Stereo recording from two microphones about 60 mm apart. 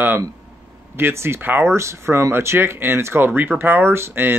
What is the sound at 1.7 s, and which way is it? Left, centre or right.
Speech, right.